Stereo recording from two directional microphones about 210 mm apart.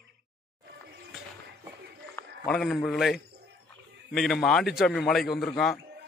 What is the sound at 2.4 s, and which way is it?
A man's voice, centre (ahead or behind).